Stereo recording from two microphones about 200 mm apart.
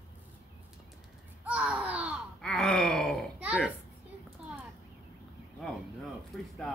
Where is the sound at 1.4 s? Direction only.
5° right (ahead or behind).